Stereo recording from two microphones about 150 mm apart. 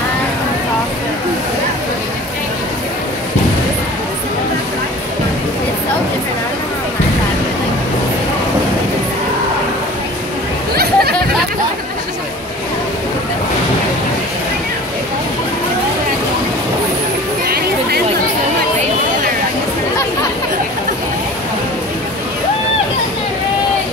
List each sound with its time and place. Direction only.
10.7 s chatter: 90° right